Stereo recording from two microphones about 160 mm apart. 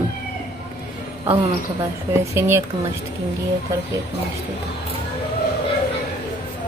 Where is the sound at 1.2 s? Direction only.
15° right (ahead or behind).